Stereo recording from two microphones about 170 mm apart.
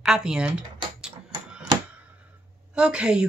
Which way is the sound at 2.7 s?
5° right (ahead or behind).